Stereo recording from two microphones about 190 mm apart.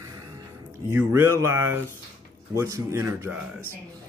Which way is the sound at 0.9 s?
15° right (ahead or behind).